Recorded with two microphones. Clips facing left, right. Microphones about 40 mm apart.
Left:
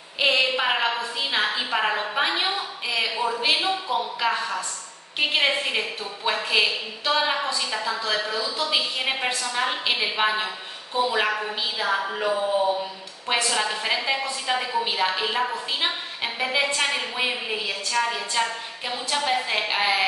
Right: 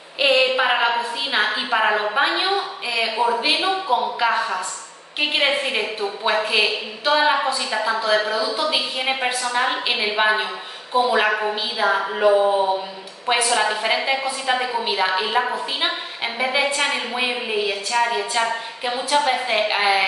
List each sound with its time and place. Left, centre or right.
0.2 s a sound: centre
2.1 s a woman's voice: centre
12.3 s speech: right
13.3 s a woman's voice: centre